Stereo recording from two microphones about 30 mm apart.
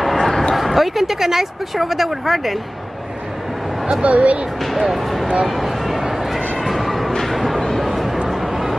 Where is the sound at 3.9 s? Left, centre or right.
Right.